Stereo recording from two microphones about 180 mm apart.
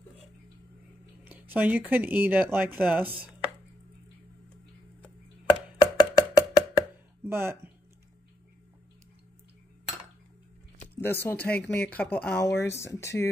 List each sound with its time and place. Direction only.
1.2 s speech: 10° right (ahead or behind)
5.8 s chopping: 20° left (ahead or behind)
7.2 s speech: 15° right (ahead or behind)
11.0 s speech: 10° left (ahead or behind)